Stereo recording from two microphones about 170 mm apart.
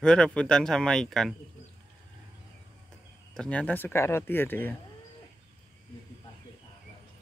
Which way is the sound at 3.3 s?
5° left (ahead or behind).